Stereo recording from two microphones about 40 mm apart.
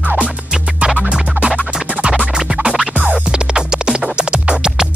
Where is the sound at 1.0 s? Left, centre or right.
Centre.